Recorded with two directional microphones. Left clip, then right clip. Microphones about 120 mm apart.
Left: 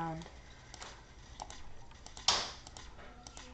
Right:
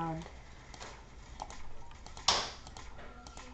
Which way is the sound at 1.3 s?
20° left (ahead or behind).